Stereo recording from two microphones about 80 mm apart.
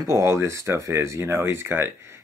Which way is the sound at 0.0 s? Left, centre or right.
Right.